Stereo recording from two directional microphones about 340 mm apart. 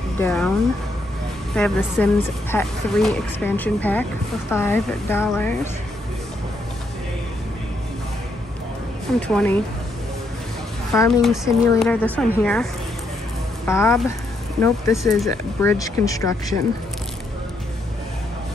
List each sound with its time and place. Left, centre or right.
0.2 s speech: centre
1.5 s speech: centre
9.3 s speech: centre
10.9 s speech: centre
13.7 s speech: centre